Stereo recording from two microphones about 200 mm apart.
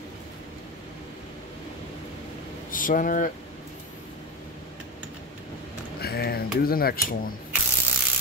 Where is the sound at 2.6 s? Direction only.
45° left (ahead or behind).